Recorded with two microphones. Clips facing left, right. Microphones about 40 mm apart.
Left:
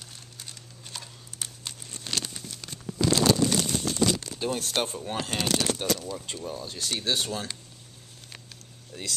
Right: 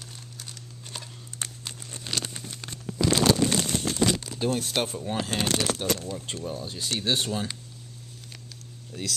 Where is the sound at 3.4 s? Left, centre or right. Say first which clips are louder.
Even; right.